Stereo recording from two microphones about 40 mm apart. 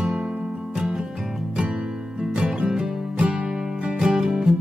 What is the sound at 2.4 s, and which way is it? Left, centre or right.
Music, right.